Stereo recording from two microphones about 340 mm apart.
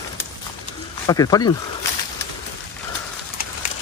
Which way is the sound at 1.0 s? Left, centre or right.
Centre.